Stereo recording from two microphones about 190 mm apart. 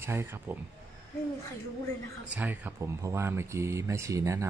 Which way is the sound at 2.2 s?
10° right (ahead or behind).